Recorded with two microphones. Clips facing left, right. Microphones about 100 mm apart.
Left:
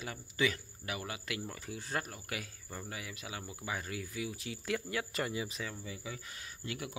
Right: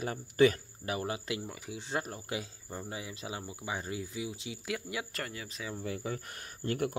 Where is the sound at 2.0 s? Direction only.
30° right (ahead or behind).